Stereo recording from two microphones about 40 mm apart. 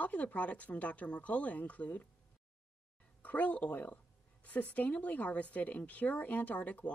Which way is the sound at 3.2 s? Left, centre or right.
Left.